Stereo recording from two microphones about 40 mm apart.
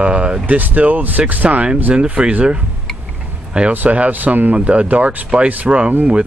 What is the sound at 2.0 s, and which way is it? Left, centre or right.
Speech, right.